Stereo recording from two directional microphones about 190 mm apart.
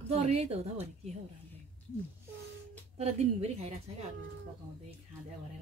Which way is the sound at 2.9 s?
35° right (ahead or behind).